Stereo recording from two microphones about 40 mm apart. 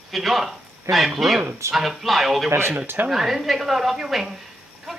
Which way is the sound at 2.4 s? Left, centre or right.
Right.